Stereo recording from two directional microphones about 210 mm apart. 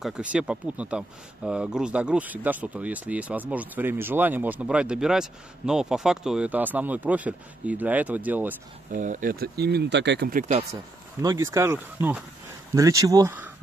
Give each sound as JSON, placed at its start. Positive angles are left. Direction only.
{"t": 0.0, "sound": "speech", "side_deg": -5}
{"t": 8.9, "sound": "speech", "side_deg": -40}
{"t": 10.7, "sound": "speech", "side_deg": -15}